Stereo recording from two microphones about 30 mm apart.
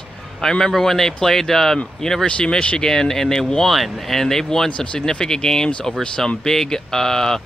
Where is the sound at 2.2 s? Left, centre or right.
Left.